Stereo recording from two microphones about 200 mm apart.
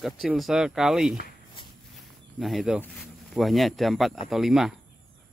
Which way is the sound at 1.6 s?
25° left (ahead or behind).